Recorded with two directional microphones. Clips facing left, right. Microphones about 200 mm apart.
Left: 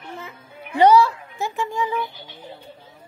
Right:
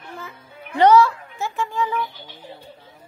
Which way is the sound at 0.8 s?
15° left (ahead or behind).